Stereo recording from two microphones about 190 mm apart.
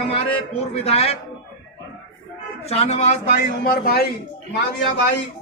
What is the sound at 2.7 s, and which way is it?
A man's voice, 35° left (ahead or behind).